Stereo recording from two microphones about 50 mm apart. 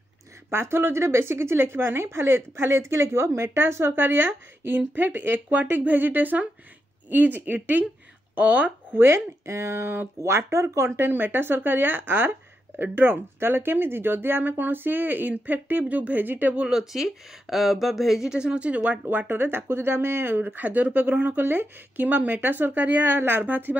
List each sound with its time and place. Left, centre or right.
0.5 s a woman's voice: right
8.9 s speech: right
10.1 s speech: right
10.9 s speech: right
16.5 s speech: centre
18.3 s a woman's voice: centre
19.0 s speech: right
21.3 s speech: right
22.0 s speech: right